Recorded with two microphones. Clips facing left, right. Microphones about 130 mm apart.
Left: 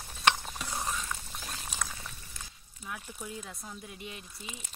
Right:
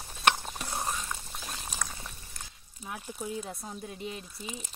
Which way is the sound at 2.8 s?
30° right (ahead or behind).